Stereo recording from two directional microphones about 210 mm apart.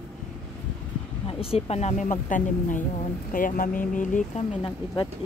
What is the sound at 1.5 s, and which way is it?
Speech, 30° left (ahead or behind).